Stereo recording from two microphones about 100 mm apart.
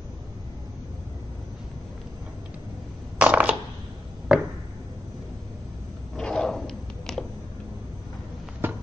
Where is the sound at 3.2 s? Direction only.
15° right (ahead or behind).